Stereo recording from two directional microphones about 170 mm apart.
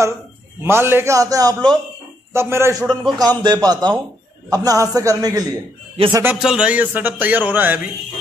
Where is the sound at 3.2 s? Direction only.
25° right (ahead or behind).